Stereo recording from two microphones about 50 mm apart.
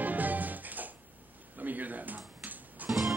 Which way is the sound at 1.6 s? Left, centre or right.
Right.